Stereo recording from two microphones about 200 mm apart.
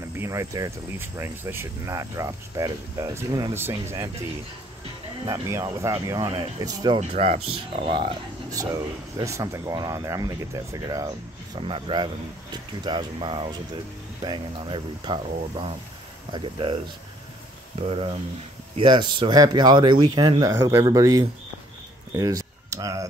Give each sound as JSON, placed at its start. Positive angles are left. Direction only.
{"t": 0.2, "sound": "speech", "side_deg": -15}
{"t": 5.2, "sound": "speech", "side_deg": -15}
{"t": 7.0, "sound": "speech", "side_deg": -35}
{"t": 18.8, "sound": "speech", "side_deg": -25}
{"t": 22.1, "sound": "a sound", "side_deg": -15}